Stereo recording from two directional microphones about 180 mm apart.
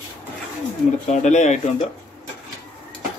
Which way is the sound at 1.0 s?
40° left (ahead or behind).